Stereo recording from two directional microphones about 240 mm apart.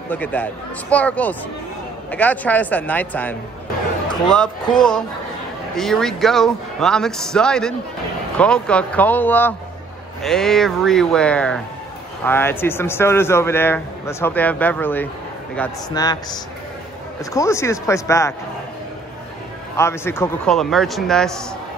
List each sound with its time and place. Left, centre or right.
0.1 s a man's voice: centre
19.8 s a man's voice: centre